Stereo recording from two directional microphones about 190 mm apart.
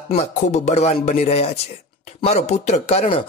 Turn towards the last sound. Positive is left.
turn(degrees=30)  # may be behind; listen again after turning